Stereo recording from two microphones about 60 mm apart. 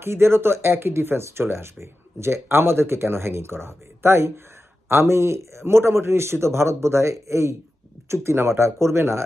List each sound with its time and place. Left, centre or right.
0.0 s speech: right